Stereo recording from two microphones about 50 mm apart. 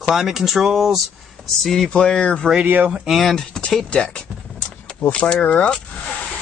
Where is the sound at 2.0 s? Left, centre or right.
Left.